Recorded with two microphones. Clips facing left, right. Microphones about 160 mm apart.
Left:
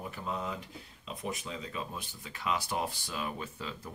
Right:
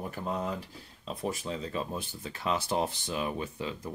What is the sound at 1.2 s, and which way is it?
Speech, 35° right (ahead or behind).